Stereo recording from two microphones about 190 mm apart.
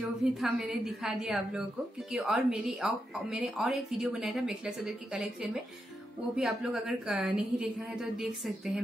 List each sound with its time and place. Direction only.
0.4 s a woman's voice: 5° right (ahead or behind)